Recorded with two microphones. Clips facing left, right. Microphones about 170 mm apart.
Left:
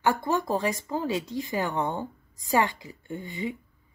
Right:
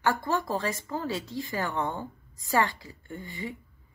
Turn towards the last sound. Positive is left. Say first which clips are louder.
# left 5 dB
turn(degrees=20)  # may be behind; listen again after turning